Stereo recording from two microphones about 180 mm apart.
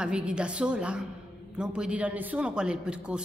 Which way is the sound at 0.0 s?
5° right (ahead or behind).